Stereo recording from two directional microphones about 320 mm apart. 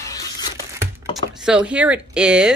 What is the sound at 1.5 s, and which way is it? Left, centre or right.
Speech, centre.